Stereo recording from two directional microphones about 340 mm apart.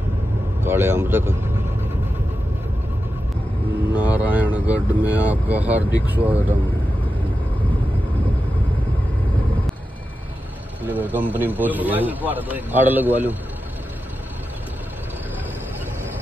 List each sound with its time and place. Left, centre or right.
0.7 s speech: centre
3.9 s a man's voice: centre
10.8 s a man's voice: centre